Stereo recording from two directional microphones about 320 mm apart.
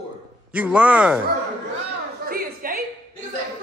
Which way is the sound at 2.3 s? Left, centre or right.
Right.